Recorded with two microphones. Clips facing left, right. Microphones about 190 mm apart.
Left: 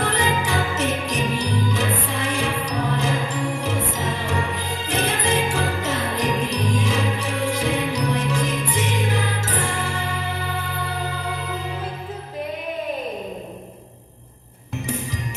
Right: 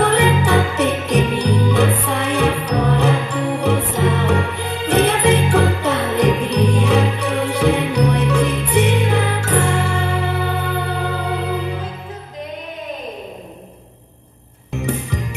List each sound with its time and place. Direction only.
0.0 s jingle bell: 65° right (ahead or behind)